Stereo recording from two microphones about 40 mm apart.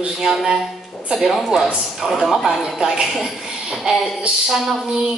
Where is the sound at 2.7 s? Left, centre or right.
Right.